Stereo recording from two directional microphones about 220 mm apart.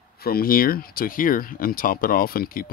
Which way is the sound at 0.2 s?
45° left (ahead or behind).